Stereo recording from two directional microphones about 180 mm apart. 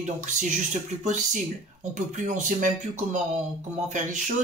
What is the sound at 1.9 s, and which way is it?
Speech, 45° right (ahead or behind).